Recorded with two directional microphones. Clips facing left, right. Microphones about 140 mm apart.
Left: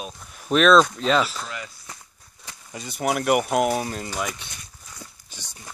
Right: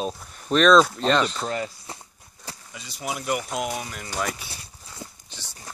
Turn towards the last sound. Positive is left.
turn(degrees=15)  # may be behind; listen again after turning